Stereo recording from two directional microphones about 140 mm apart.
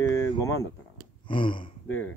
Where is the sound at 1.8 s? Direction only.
15° left (ahead or behind).